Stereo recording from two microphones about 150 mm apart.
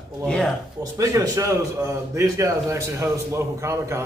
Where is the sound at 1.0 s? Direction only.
20° right (ahead or behind).